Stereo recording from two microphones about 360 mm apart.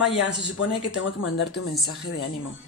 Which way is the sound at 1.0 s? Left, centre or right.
Left.